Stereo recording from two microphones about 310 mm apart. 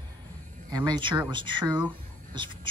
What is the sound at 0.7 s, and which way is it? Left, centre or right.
Speech, centre.